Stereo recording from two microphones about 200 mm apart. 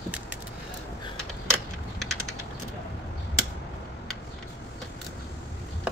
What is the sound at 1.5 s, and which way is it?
Mechanisms, centre (ahead or behind).